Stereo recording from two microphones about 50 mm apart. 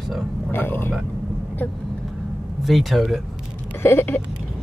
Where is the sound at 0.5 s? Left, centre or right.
Left.